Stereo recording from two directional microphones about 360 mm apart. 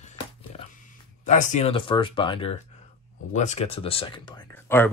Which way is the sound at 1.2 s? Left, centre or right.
Centre.